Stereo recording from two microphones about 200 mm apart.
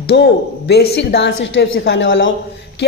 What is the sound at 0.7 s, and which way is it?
A woman's voice, 55° left (ahead or behind).